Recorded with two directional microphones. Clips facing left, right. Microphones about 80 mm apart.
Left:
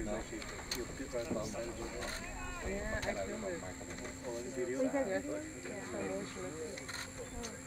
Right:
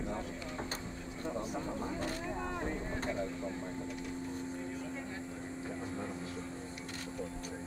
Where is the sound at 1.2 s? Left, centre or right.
Right.